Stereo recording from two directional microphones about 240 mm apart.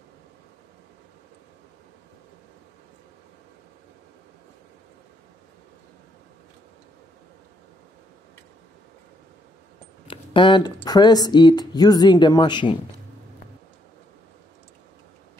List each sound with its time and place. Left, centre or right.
10.0 s speech: centre